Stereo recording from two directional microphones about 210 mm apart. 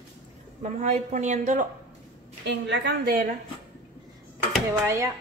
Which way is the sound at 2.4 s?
55° right (ahead or behind).